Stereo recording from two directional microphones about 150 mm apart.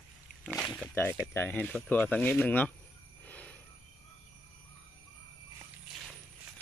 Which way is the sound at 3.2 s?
10° left (ahead or behind).